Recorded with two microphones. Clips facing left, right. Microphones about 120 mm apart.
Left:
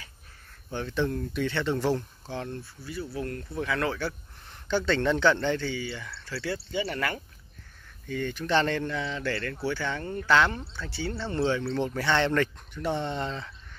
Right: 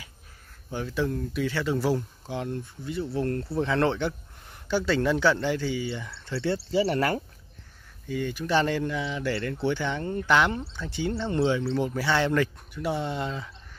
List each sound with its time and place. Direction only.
0.7 s speech: 10° right (ahead or behind); by 4.1 s 25° right (ahead or behind)
4.6 s speech: 10° right (ahead or behind)
6.7 s speech: 35° right (ahead or behind)
8.1 s speech: 10° right (ahead or behind)